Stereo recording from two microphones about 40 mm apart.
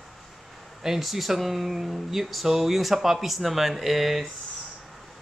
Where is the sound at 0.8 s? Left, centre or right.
Centre.